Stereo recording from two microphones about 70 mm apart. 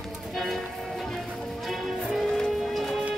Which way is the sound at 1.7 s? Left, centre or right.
Centre.